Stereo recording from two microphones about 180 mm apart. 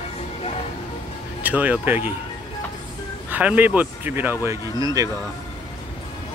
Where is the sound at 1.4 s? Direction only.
10° right (ahead or behind).